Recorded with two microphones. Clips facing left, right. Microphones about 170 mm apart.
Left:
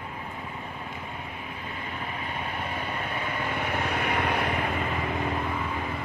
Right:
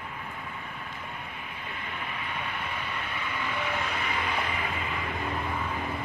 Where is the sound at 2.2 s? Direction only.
45° left (ahead or behind).